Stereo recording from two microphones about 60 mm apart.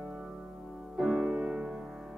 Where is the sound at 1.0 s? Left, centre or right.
Centre.